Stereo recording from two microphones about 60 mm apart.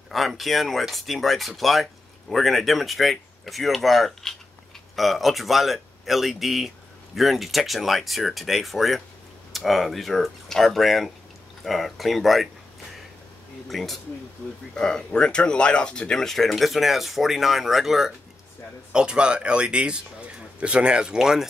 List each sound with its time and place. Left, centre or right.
0.1 s speech: centre
13.7 s speech: centre
18.9 s speech: centre